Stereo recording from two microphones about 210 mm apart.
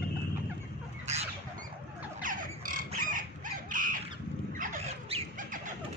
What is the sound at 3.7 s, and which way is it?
Crow, 40° right (ahead or behind).